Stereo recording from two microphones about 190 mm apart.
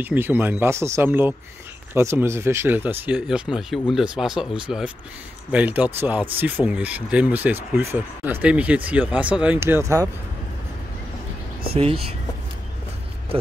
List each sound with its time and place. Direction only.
0.0 s speech: 10° right (ahead or behind)
11.7 s speech: 30° right (ahead or behind)